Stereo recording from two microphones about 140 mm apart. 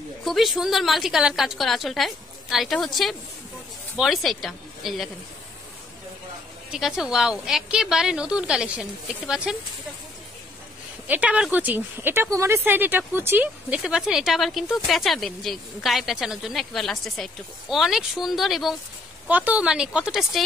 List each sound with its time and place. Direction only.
0.2 s a woman's voice: centre (ahead or behind)
6.7 s a woman's voice: 5° right (ahead or behind)
11.1 s a woman's voice: 10° right (ahead or behind)